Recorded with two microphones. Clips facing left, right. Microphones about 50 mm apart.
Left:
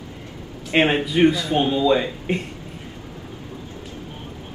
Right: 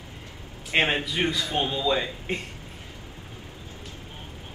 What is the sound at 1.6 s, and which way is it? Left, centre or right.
Speech, centre.